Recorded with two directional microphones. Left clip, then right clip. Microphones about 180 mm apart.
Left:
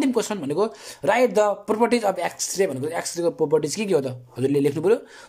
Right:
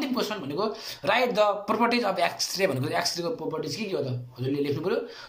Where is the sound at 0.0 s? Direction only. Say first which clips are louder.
Left 6 dB; 50° left (ahead or behind).